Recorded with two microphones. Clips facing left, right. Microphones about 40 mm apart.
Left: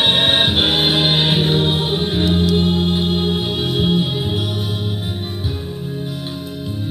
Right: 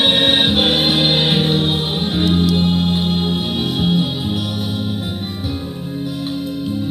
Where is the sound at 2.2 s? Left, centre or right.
Left.